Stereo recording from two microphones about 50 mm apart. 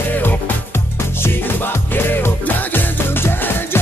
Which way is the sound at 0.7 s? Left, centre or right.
Left.